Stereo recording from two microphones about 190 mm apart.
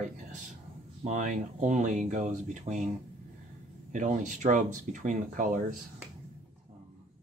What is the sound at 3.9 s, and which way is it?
Speech, 40° right (ahead or behind).